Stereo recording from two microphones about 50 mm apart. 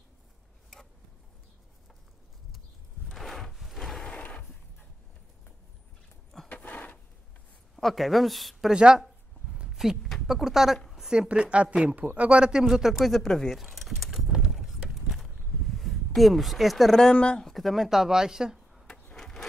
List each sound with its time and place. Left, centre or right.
3.2 s wood: centre
6.5 s a sound: left
7.7 s speech: centre
9.8 s a man's voice: centre
11.2 s a man's voice: right; by 13.6 s centre
13.6 s a sound: centre
17.1 s speech: left
17.4 s speech: centre
19.1 s a sound: centre